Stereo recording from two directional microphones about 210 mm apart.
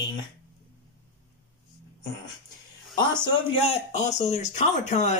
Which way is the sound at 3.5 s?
30° left (ahead or behind).